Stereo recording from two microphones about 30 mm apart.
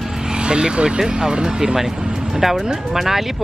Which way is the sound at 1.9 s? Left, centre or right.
Right.